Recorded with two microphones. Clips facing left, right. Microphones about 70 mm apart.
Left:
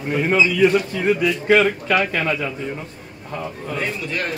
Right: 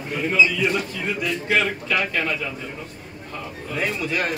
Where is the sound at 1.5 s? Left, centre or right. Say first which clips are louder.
Left 6 dB; left.